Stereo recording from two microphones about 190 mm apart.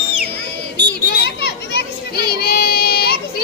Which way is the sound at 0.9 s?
60° left (ahead or behind).